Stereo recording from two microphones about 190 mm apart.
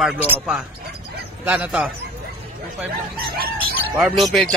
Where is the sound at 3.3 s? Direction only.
50° right (ahead or behind).